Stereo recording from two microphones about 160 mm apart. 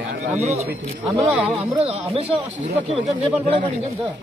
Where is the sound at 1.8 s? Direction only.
40° right (ahead or behind).